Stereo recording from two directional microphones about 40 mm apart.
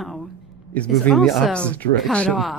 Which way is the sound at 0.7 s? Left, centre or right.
Left.